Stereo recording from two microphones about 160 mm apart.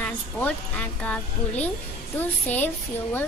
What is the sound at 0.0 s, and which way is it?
A child's voice, 10° left (ahead or behind).